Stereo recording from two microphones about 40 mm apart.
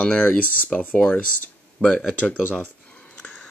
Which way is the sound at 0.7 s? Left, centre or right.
Left.